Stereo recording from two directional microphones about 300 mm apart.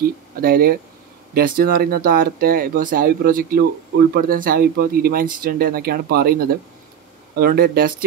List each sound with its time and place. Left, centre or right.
0.0 s speech: right